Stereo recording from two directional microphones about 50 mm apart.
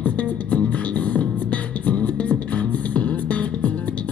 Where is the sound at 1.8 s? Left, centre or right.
Left.